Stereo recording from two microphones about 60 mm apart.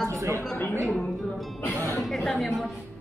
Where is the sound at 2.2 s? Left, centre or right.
Centre.